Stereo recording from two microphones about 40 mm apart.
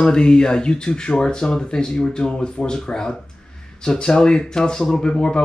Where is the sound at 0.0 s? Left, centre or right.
Centre.